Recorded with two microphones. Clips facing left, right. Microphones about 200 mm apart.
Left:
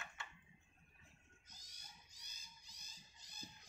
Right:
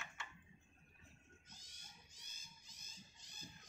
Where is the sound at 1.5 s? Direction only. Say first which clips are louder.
Right 1 dB; 40° left (ahead or behind).